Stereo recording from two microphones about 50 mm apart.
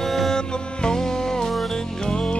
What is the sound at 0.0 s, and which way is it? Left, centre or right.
Music, centre.